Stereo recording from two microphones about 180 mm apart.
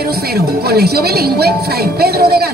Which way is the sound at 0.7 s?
60° right (ahead or behind).